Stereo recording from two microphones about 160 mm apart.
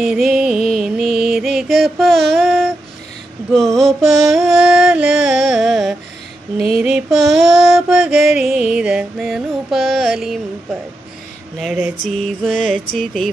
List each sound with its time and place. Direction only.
0.0 s music: 5° right (ahead or behind)